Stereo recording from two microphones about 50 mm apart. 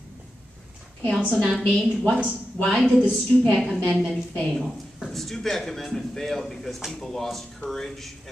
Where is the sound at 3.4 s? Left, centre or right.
Centre.